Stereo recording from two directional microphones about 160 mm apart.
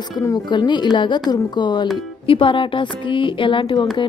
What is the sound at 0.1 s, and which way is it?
A woman's voice, 25° left (ahead or behind).